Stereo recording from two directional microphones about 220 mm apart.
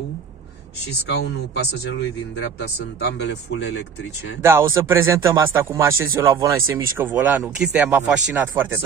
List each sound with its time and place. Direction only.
1.0 s speech: 50° left (ahead or behind)
4.4 s speech: 10° right (ahead or behind)